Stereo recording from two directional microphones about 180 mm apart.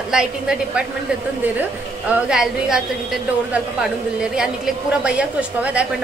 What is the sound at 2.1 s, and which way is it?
Speech, 5° right (ahead or behind).